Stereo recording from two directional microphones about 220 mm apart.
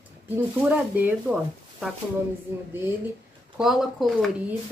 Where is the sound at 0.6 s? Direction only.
5° right (ahead or behind).